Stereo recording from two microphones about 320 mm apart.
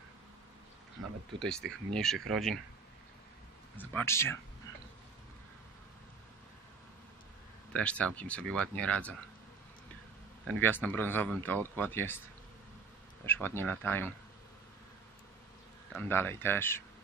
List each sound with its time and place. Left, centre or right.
1.4 s speech: centre
3.7 s speech: centre
7.7 s speech: centre
10.6 s speech: centre
13.2 s speech: centre
15.9 s speech: centre